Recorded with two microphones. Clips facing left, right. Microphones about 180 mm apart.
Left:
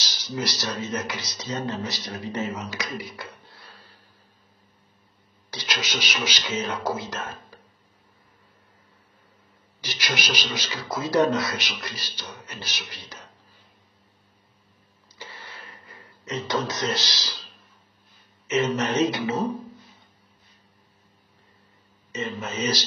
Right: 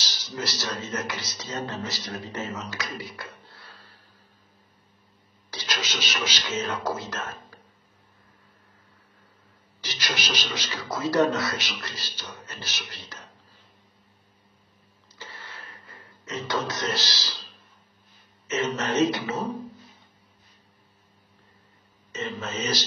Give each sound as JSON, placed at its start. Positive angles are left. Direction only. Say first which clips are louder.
{"t": 0.0, "sound": "speech", "louder": "left 3 dB", "side_deg": 15}
{"t": 5.5, "sound": "speech", "louder": "left 2 dB", "side_deg": 15}
{"t": 9.8, "sound": "a man's voice", "louder": "left 2 dB", "side_deg": 15}
{"t": 16.3, "sound": "speech", "louder": "left 2 dB", "side_deg": 20}
{"t": 18.5, "sound": "speech", "louder": "left 3 dB", "side_deg": 15}
{"t": 22.1, "sound": "speech", "louder": "left 1 dB", "side_deg": 15}